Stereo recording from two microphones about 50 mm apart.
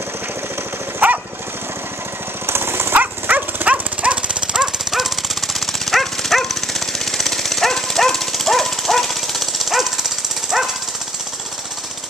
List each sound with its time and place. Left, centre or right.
0.9 s lawn mower: right
2.4 s dog: right
3.0 s dog: right; by 4.6 s centre
4.9 s jackhammer: centre